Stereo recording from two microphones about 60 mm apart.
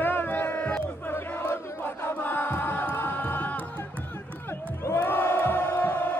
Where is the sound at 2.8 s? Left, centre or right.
Left.